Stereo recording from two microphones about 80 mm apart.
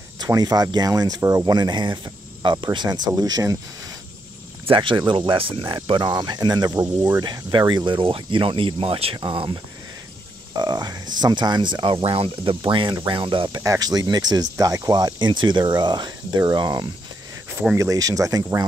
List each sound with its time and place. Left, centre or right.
0.3 s speech: right
4.7 s speech: right
5.9 s speech: right
10.5 s speech: right
13.7 s speech: right
17.7 s speech: right